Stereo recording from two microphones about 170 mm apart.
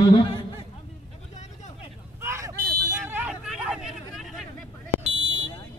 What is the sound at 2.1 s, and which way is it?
Vehicle, 15° right (ahead or behind).